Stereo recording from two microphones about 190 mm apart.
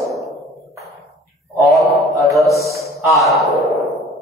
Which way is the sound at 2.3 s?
Centre (ahead or behind).